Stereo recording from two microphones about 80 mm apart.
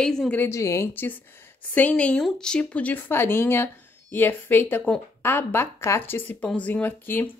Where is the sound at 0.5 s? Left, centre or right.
Left.